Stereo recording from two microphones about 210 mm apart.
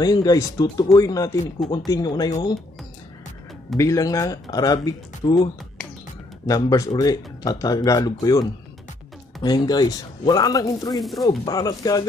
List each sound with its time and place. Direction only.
0.0 s speech: 20° left (ahead or behind)
3.7 s speech: 15° left (ahead or behind)